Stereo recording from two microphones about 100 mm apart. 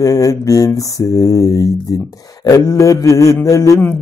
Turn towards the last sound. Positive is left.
turn(degrees=30)  # may be behind; listen again after turning